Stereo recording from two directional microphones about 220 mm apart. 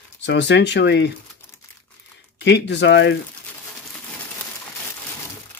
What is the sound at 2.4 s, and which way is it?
Speech, 50° left (ahead or behind).